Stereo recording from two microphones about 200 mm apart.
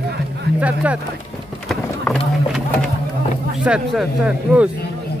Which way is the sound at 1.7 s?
Centre (ahead or behind).